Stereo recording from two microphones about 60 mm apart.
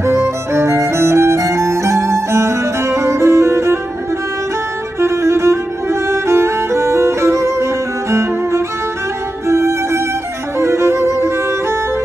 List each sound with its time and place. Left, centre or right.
0.0 s violin: right
5.0 s music: right
10.6 s violin: right